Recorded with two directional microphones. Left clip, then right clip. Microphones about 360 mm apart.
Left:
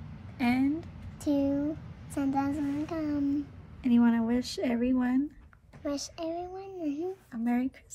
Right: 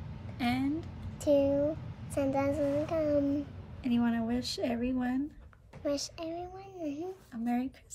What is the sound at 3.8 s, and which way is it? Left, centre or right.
A woman's voice, centre.